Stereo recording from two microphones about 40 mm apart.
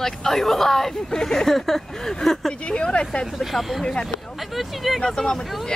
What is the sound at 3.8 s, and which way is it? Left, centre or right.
Speech, centre.